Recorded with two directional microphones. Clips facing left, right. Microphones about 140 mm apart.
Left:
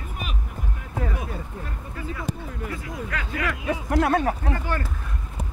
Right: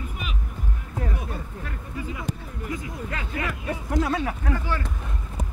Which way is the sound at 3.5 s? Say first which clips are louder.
Left 6 dB; 80° left.